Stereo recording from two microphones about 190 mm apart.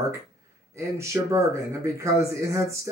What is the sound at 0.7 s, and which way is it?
Speech, 15° right (ahead or behind).